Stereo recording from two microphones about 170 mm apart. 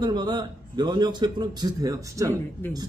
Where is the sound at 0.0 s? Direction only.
25° right (ahead or behind).